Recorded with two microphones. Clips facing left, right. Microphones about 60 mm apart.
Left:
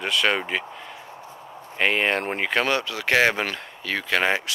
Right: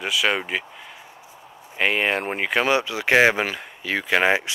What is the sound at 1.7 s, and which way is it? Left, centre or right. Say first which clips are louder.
Speech: even; centre.